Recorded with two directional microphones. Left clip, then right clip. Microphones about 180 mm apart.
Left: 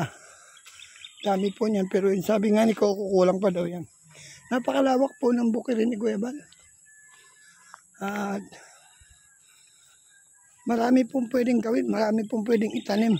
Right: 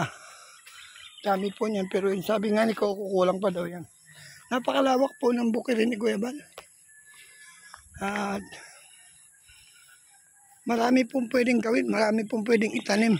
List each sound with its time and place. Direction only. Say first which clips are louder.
0.0 s bird: right 2 dB; 35° left (ahead or behind)
1.6 s speech: left 3 dB; 50° left (ahead or behind); by 6.4 s 25° left (ahead or behind)
7.3 s music: right 4 dB; 30° left (ahead or behind)
7.9 s speech: right 1 dB; 25° left (ahead or behind)
10.7 s speech: left 1 dB; 35° left (ahead or behind); by 13.2 s 20° left (ahead or behind)